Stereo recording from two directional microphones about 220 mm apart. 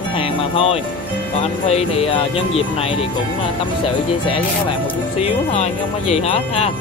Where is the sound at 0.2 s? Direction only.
25° left (ahead or behind).